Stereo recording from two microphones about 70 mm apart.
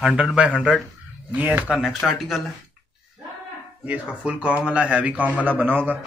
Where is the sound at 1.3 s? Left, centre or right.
Right.